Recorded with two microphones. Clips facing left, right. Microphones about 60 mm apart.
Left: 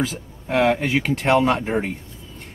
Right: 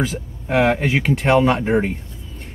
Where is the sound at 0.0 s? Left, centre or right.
Centre.